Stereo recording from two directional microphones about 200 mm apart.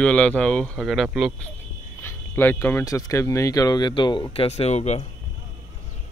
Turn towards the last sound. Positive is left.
turn(degrees=35)  # may be behind; listen again after turning